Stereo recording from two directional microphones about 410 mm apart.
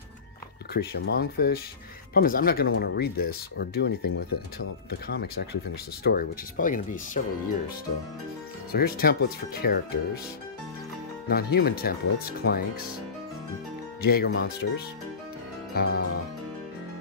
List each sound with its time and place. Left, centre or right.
0.7 s speech: left
8.7 s speech: left
11.2 s speech: left
14.0 s speech: left
15.7 s music: left